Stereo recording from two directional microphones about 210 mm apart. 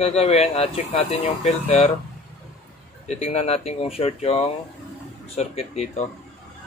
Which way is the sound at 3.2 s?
30° left (ahead or behind).